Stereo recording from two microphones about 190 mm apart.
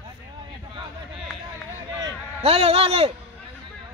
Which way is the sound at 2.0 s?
25° right (ahead or behind).